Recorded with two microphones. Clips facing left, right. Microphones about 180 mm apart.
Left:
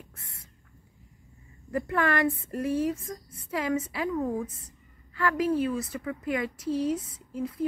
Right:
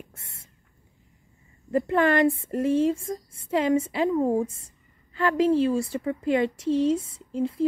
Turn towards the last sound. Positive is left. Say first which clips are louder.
# right 6 dB
turn(degrees=-25)  # may be behind; listen again after turning